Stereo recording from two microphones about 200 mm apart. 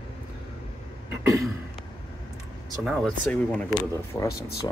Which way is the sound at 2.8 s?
5° left (ahead or behind).